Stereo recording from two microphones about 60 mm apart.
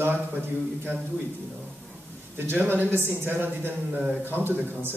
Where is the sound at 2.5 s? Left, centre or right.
Right.